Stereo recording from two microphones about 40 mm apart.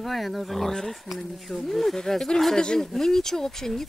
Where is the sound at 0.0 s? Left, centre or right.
Centre.